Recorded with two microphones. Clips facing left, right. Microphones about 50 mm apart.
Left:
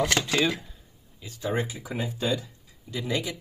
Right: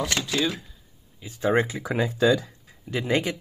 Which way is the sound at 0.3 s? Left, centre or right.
Left.